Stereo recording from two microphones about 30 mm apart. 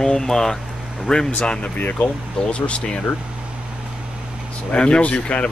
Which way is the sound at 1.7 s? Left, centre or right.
Left.